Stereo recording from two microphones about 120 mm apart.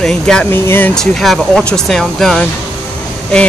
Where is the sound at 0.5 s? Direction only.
20° left (ahead or behind).